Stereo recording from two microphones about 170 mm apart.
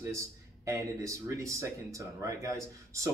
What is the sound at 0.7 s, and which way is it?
Speech, 20° right (ahead or behind).